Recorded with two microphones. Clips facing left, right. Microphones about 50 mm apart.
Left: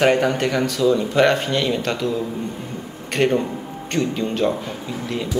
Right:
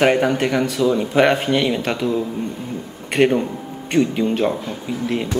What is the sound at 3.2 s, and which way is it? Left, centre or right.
Speech, centre.